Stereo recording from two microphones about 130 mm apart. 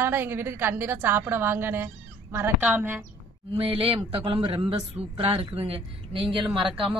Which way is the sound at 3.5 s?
45° right (ahead or behind).